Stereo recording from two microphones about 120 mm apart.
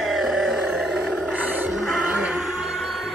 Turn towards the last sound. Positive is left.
turn(degrees=0)  # may be behind; listen again after turning